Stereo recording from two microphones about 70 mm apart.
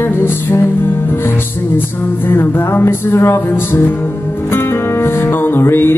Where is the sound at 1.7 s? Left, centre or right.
Left.